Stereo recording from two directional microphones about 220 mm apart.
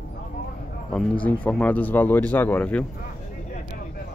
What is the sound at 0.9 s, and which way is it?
Speech, 5° left (ahead or behind).